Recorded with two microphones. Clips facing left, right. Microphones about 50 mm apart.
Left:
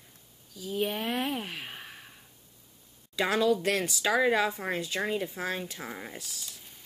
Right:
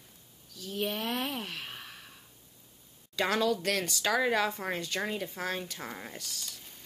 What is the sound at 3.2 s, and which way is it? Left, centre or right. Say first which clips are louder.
Speech: left 3 dB; centre.